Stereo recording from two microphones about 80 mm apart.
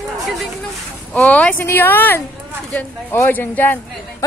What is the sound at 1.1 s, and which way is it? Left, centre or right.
Speech, centre.